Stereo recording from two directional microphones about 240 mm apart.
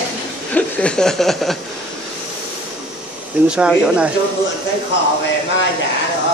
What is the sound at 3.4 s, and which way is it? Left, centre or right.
Speech, centre.